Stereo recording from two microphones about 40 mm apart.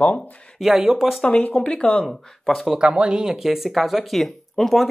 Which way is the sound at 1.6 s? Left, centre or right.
Left.